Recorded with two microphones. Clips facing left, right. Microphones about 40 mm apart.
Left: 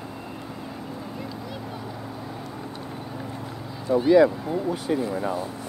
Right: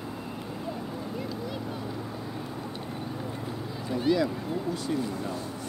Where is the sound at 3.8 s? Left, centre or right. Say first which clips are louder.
Left 6 dB; centre.